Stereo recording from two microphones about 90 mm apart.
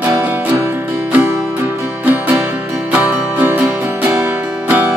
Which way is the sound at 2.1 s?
20° right (ahead or behind).